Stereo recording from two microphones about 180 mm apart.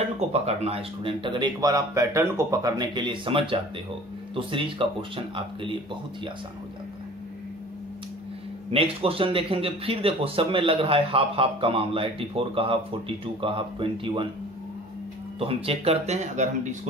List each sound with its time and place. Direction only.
0.3 s speech: 35° right (ahead or behind)
9.0 s a man's voice: 30° right (ahead or behind)
15.3 s a man's voice: 30° right (ahead or behind)